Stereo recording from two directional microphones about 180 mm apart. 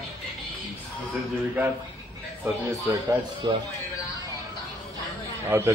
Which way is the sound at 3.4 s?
25° right (ahead or behind).